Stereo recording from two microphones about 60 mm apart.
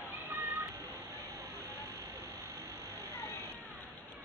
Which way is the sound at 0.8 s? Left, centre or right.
Right.